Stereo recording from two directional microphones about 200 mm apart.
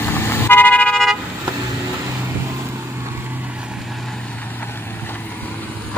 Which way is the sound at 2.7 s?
10° right (ahead or behind).